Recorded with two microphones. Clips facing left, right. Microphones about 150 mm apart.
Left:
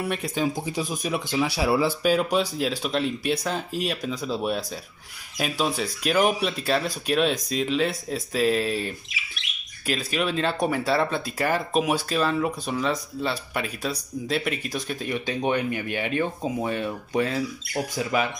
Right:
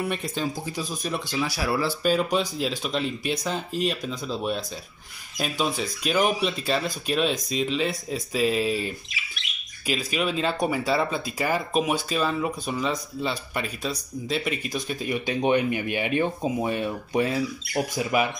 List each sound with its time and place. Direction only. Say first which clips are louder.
0.1 s speech: left 3 dB; 10° left (ahead or behind)
1.3 s speech: left 4 dB; 25° left (ahead or behind)
2.5 s speech: left 2 dB; centre (ahead or behind); by 18.3 s 15° right (ahead or behind)